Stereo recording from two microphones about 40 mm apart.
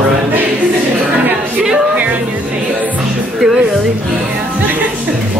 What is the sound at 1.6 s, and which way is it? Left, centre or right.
Music, centre.